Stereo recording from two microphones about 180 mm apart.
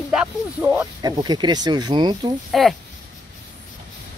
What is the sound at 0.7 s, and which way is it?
Speech, 20° right (ahead or behind).